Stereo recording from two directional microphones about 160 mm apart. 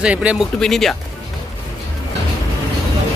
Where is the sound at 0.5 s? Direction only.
5° left (ahead or behind).